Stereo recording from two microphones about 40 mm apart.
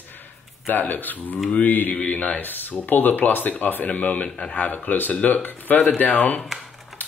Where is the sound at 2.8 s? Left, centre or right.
Left.